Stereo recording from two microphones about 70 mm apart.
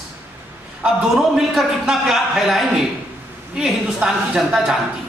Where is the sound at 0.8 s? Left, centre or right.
Centre.